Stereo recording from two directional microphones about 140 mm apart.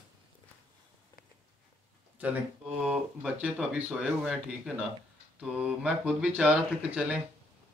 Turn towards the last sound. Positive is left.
turn(degrees=-10)  # may be behind; listen again after turning